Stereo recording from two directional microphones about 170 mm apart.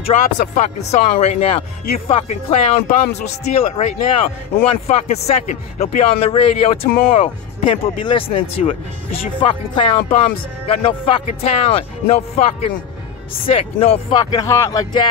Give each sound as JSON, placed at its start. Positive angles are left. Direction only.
{"t": 0.0, "sound": "speech", "side_deg": 40}